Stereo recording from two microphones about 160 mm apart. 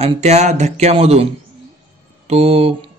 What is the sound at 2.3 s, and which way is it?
Speech, 40° right (ahead or behind).